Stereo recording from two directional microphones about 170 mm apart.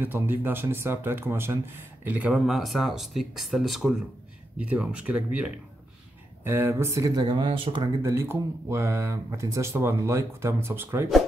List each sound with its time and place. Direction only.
0.0 s speech: 10° right (ahead or behind); by 7.9 s 30° right (ahead or behind)
8.0 s speech: 15° right (ahead or behind)